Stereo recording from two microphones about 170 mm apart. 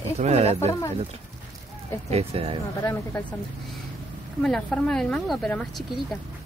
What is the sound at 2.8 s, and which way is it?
Speech, 15° left (ahead or behind).